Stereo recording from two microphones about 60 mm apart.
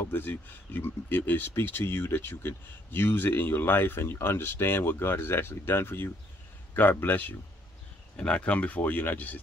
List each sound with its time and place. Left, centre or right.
0.0 s speech: left
8.2 s speech: left